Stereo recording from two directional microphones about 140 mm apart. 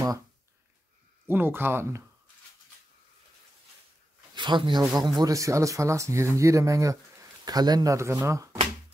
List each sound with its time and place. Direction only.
1.2 s speech: 15° right (ahead or behind)
4.4 s speech: 35° right (ahead or behind)